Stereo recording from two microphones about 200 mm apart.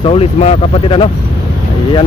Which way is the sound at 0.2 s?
30° left (ahead or behind).